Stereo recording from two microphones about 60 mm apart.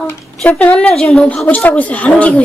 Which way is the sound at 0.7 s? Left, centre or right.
Centre.